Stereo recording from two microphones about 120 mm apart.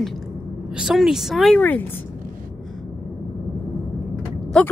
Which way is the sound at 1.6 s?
15° left (ahead or behind).